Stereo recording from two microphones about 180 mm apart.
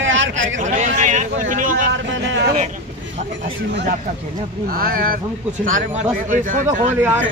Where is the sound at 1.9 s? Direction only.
90° right.